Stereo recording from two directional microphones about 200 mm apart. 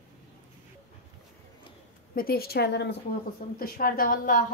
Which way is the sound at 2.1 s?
50° left (ahead or behind).